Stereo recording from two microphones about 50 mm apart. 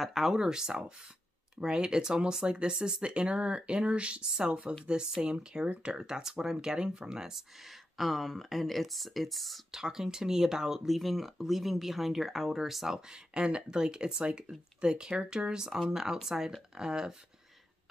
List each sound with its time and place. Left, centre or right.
0.0 s speech: centre
8.0 s speech: centre
9.7 s speech: centre
13.3 s speech: centre